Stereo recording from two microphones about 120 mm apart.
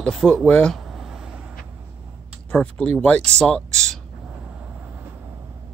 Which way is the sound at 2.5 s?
10° left (ahead or behind).